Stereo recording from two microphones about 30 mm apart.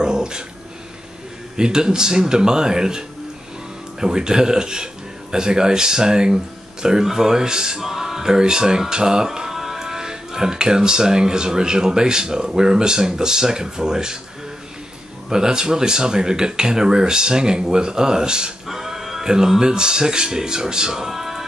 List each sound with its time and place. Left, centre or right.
0.0 s dog: right
1.6 s speech: right
15.2 s speech: right
18.7 s music: centre
19.2 s speech: right